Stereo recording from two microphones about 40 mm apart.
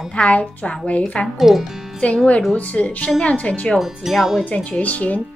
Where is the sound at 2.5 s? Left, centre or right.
Left.